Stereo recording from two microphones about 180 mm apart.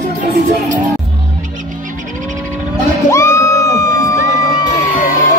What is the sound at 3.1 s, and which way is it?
Crowd, 15° left (ahead or behind).